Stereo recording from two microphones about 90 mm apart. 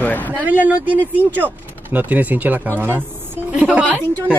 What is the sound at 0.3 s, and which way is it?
A woman's voice, 20° right (ahead or behind).